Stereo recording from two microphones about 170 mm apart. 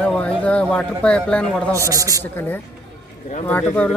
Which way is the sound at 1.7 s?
20° right (ahead or behind).